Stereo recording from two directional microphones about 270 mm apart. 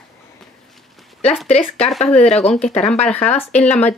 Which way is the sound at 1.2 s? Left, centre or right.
Left.